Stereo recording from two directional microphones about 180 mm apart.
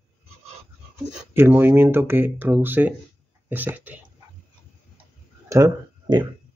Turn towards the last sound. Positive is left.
turn(degrees=-20)  # may be behind; listen again after turning